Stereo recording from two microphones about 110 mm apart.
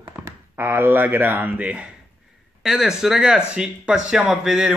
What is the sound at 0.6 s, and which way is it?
Speech, 20° right (ahead or behind).